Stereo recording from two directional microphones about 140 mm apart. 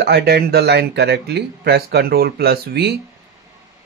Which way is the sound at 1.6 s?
90° right.